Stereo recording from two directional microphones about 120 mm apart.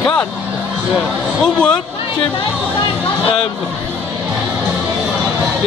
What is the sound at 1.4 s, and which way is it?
Speech, 5° left (ahead or behind).